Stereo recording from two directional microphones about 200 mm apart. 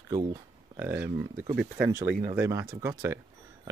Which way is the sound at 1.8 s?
20° right (ahead or behind).